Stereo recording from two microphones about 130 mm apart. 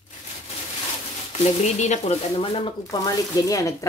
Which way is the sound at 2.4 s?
45° left (ahead or behind).